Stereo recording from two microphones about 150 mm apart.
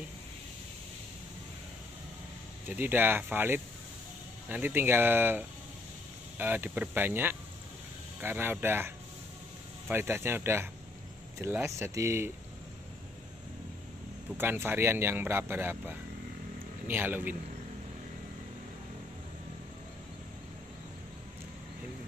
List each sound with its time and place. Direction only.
2.7 s speech: 15° right (ahead or behind)
14.3 s speech: 15° right (ahead or behind)